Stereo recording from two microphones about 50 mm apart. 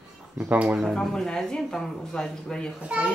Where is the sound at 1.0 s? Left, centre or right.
Centre.